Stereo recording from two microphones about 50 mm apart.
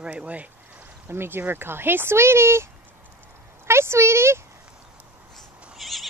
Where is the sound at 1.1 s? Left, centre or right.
Right.